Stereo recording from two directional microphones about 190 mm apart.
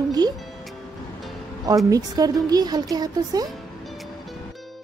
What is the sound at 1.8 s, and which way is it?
A woman's voice, 20° right (ahead or behind).